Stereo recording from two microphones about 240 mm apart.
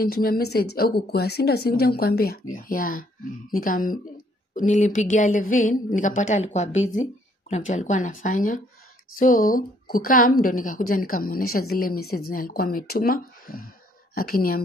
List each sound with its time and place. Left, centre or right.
0.0 s a woman's voice: left